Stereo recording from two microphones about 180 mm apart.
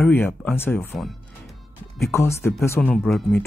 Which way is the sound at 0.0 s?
10° left (ahead or behind).